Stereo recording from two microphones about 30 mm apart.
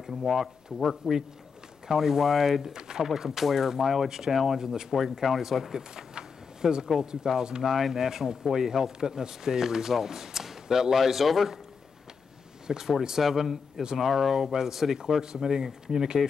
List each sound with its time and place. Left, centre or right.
0.0 s speech: centre
2.7 s speech: right
3.1 s speech: centre
5.2 s speech: centre
5.8 s a sound: right
7.0 s speech: centre
12.7 s speech: centre
15.0 s speech: right